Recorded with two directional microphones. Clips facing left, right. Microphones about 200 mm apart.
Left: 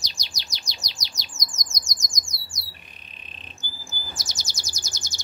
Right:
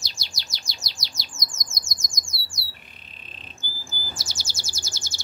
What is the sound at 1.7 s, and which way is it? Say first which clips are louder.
Bird: even; 15° left (ahead or behind).